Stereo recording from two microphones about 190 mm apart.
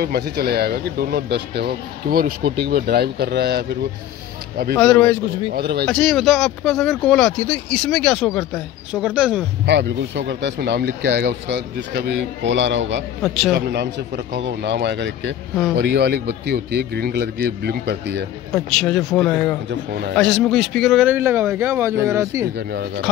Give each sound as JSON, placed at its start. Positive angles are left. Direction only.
{"t": 0.0, "sound": "speech", "side_deg": -55}
{"t": 4.7, "sound": "speech", "side_deg": 5}
{"t": 5.5, "sound": "speech", "side_deg": -55}
{"t": 5.9, "sound": "speech", "side_deg": 0}
{"t": 9.7, "sound": "speech", "side_deg": -65}
{"t": 18.5, "sound": "speech", "side_deg": 5}
{"t": 19.7, "sound": "speech", "side_deg": -60}
{"t": 20.2, "sound": "speech", "side_deg": 0}
{"t": 22.6, "sound": "speech", "side_deg": -60}